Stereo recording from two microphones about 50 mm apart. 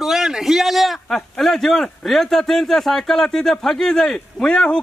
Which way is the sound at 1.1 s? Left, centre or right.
Centre.